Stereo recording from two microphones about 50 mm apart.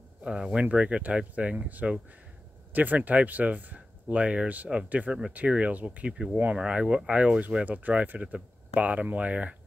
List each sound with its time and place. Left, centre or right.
0.2 s speech: centre